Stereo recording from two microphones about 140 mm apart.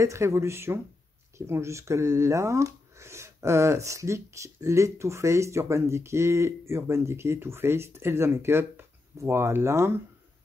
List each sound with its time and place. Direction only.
0.0 s speech: 20° right (ahead or behind)